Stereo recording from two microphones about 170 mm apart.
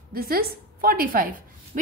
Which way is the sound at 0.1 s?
60° right (ahead or behind).